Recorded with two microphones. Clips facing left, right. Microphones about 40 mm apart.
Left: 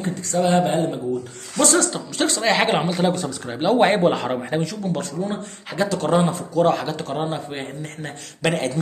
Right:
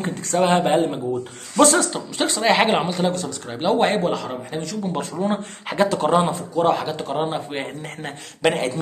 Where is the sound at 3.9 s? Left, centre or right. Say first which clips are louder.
Left 3 dB; left.